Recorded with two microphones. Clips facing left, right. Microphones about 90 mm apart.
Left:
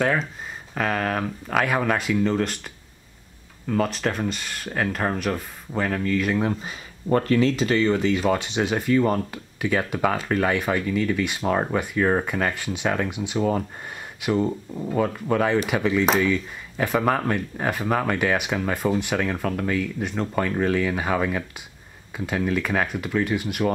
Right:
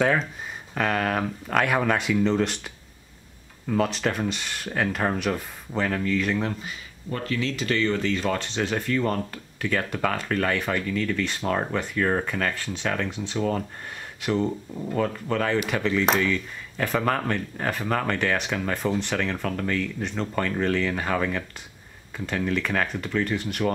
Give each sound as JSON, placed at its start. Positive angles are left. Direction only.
{"t": 0.0, "sound": "speech", "side_deg": 0}
{"t": 7.1, "sound": "speech", "side_deg": 45}
{"t": 7.6, "sound": "speech", "side_deg": 15}